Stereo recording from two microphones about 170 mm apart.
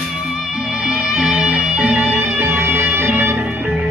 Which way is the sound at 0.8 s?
5° right (ahead or behind).